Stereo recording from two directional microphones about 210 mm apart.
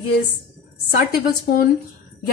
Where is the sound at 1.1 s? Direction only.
45° left (ahead or behind).